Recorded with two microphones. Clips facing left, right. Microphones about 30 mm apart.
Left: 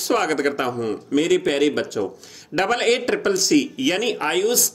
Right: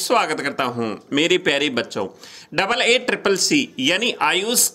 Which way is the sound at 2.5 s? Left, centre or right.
Right.